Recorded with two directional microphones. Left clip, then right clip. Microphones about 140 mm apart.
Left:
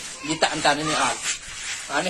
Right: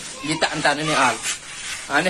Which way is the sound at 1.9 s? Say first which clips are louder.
Right 5 dB; centre (ahead or behind).